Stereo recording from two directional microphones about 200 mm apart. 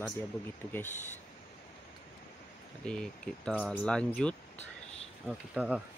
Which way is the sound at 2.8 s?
5° left (ahead or behind).